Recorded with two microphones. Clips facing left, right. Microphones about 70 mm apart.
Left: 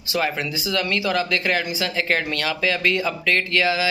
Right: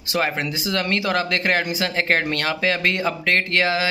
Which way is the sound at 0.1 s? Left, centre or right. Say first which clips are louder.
Right 1 dB; right.